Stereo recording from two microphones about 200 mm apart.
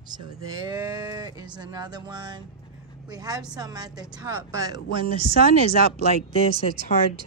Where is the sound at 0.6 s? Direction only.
20° right (ahead or behind).